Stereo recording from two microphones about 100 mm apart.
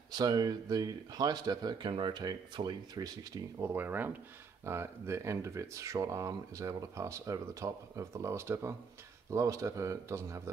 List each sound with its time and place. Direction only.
0.1 s speech: 40° right (ahead or behind)
3.5 s speech: 25° right (ahead or behind)